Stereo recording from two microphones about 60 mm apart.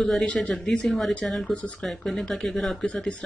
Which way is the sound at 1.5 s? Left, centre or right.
Left.